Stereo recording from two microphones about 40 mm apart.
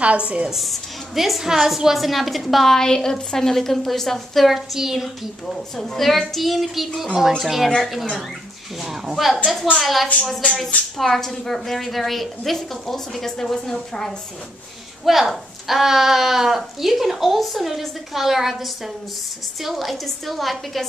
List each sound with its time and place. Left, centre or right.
0.0 s a woman's voice: right
0.6 s a woman's voice: centre
4.6 s speech: centre
5.9 s a woman's voice: centre
11.0 s a woman's voice: centre
15.0 s a woman's voice: centre